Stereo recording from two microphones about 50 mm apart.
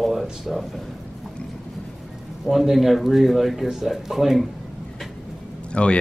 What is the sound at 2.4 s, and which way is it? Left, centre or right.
A man's voice, centre.